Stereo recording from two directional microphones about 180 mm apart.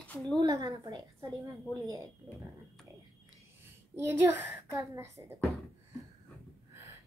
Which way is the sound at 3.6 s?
15° right (ahead or behind).